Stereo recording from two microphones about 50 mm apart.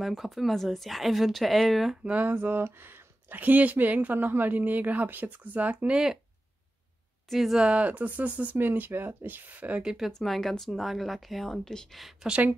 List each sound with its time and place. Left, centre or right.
0.0 s speech: centre
2.2 s speech: right
5.9 s speech: centre
7.2 s speech: centre
7.5 s speech: right
10.2 s speech: centre